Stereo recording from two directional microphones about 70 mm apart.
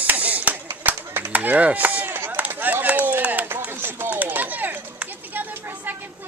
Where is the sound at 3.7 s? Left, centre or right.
Right.